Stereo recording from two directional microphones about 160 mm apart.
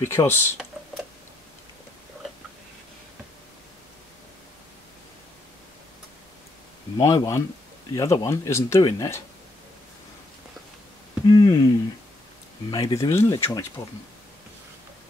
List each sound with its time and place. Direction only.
0.1 s speech: 15° left (ahead or behind)
7.0 s speech: 25° left (ahead or behind)
11.2 s speech: 25° left (ahead or behind)
12.7 s speech: 25° left (ahead or behind)